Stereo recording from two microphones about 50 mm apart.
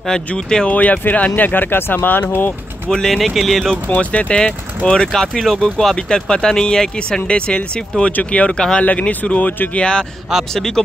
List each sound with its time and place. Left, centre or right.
0.7 s speech: left
2.9 s speech: centre
3.9 s speech: left
4.4 s speech: centre